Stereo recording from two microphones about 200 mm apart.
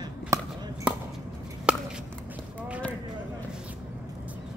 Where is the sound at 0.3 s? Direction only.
15° right (ahead or behind).